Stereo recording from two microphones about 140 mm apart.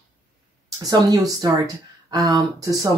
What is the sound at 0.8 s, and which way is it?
Speech, 25° right (ahead or behind).